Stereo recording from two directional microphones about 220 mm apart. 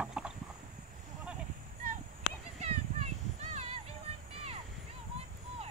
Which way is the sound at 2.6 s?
30° right (ahead or behind).